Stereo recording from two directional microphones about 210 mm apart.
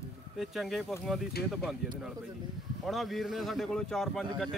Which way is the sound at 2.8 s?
Centre (ahead or behind).